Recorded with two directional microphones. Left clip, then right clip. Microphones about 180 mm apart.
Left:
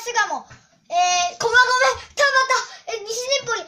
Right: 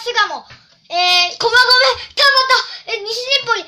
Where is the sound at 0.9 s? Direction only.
Centre (ahead or behind).